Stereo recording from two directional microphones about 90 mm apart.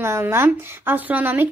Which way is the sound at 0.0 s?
30° right (ahead or behind).